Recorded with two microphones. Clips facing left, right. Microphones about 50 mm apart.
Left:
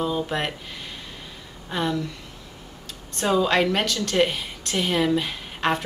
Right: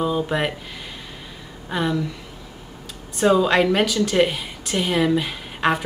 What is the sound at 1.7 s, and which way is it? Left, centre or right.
Speech, centre.